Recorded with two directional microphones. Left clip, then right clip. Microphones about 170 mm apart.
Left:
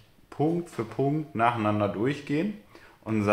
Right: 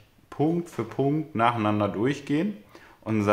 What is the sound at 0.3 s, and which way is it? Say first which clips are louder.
Speech: right 1 dB; 20° right (ahead or behind).